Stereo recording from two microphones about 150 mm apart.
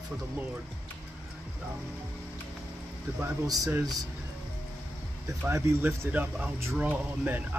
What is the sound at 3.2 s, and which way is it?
Speech, 20° right (ahead or behind).